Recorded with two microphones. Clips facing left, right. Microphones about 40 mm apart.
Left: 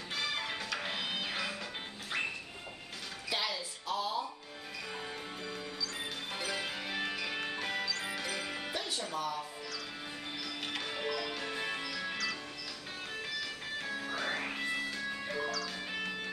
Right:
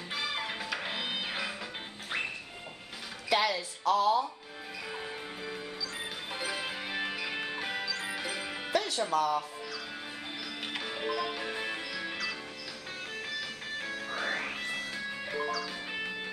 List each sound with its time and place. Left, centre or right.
0.1 s music: centre
3.3 s a sound: right
3.8 s speech: right
4.9 s music: centre
8.7 s music: right
9.1 s speech: right
10.7 s music: centre
13.4 s music: centre